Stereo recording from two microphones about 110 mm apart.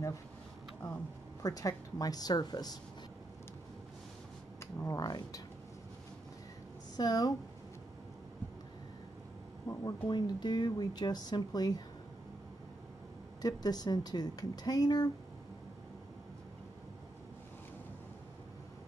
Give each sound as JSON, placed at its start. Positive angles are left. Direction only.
{"t": 1.4, "sound": "speech", "side_deg": 30}
{"t": 4.6, "sound": "speech", "side_deg": 30}
{"t": 7.0, "sound": "speech", "side_deg": 40}
{"t": 9.7, "sound": "speech", "side_deg": 35}
{"t": 13.4, "sound": "speech", "side_deg": 35}